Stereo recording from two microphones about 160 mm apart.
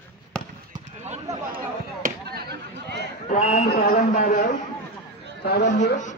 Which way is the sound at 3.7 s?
60° left (ahead or behind).